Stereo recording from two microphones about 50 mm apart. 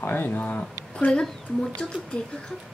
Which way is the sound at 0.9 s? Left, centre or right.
Centre.